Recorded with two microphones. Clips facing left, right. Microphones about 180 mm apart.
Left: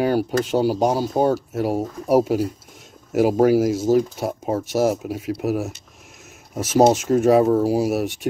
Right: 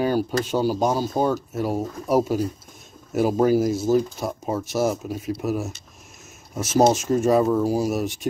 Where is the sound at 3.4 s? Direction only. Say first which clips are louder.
Left 2 dB; 80° left.